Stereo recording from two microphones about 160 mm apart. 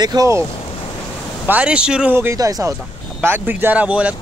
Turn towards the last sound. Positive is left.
turn(degrees=-10)  # may be behind; listen again after turning